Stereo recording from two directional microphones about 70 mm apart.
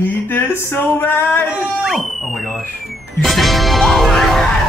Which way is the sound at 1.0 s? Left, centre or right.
Left.